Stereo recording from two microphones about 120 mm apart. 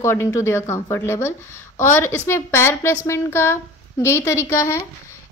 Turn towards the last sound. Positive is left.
turn(degrees=25)  # may be behind; listen again after turning